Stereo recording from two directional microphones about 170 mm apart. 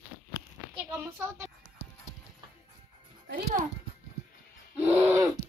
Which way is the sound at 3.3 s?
50° right (ahead or behind).